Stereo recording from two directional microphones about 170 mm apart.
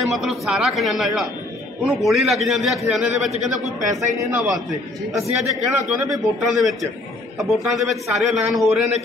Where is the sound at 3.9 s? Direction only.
15° right (ahead or behind).